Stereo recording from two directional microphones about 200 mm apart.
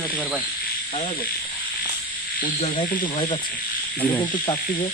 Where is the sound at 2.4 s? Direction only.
30° left (ahead or behind).